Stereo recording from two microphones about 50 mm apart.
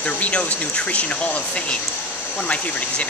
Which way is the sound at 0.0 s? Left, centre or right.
Left.